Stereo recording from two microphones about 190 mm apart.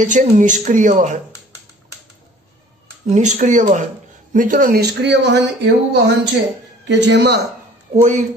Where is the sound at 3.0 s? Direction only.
40° right (ahead or behind); by 5.3 s 65° right (ahead or behind).